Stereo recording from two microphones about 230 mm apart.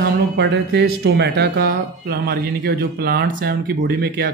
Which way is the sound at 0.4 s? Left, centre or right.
Right.